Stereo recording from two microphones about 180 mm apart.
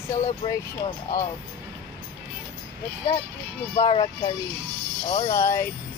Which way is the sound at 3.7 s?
25° left (ahead or behind).